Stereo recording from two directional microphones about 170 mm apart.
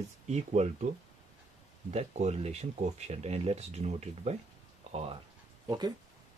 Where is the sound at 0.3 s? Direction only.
40° right (ahead or behind).